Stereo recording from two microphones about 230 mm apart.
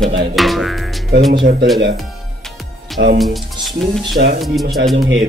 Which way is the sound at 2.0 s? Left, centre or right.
Centre.